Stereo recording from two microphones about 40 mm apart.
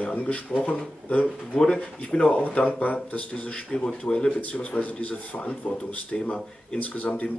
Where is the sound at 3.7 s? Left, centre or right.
Centre.